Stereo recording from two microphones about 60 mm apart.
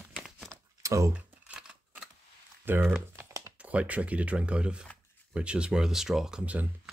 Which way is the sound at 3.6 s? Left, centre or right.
Right.